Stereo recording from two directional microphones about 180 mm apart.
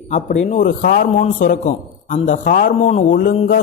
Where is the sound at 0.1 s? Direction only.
40° left (ahead or behind).